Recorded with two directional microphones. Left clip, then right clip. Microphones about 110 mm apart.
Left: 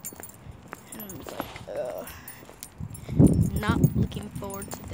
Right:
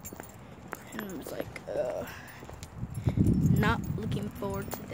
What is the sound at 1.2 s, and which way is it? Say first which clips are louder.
Speech: left 2 dB; 25° right (ahead or behind).